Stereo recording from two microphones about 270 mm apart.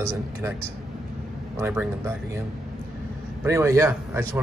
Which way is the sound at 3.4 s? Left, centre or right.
Centre.